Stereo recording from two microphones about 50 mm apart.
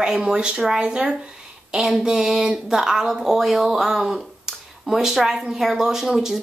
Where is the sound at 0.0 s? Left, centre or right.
Centre.